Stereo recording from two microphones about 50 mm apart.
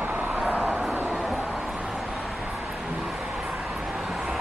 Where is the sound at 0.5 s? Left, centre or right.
Right.